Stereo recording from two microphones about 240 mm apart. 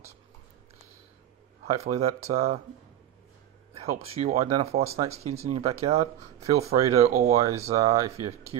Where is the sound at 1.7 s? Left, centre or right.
Right.